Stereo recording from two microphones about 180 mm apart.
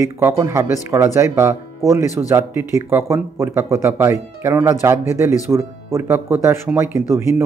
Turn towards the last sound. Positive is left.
turn(degrees=-15)  # may be behind; listen again after turning